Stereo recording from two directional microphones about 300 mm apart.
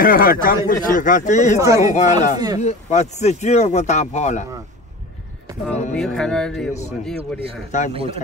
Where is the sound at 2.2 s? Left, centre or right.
Centre.